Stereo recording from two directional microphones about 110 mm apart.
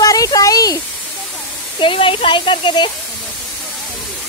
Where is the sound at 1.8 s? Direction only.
55° left (ahead or behind).